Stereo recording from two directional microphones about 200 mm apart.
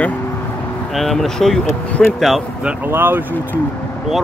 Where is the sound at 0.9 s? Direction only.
Centre (ahead or behind).